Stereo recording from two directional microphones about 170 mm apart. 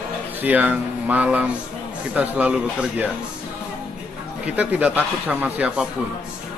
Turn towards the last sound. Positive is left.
turn(degrees=-10)  # may be behind; listen again after turning